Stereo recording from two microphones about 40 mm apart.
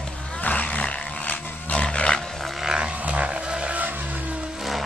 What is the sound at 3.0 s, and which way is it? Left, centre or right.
Music, right.